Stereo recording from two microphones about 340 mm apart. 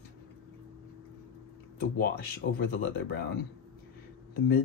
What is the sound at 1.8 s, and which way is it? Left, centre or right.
Speech, left.